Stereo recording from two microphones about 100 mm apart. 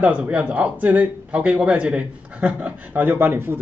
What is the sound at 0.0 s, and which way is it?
Speech, 10° right (ahead or behind).